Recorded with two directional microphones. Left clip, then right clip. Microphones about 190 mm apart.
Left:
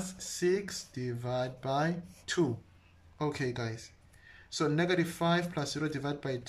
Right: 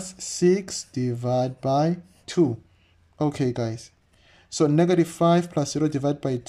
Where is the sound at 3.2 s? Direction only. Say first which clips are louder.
Right 9 dB; 35° right (ahead or behind).